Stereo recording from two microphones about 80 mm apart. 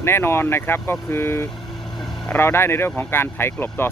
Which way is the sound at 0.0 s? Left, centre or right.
Left.